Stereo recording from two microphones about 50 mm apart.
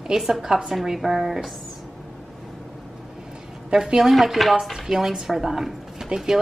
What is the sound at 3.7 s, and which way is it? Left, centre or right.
Speech, centre.